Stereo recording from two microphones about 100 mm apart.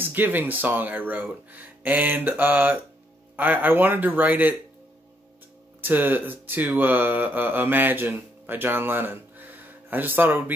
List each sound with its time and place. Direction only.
0.0 s speech: 20° right (ahead or behind)
5.8 s speech: 20° right (ahead or behind)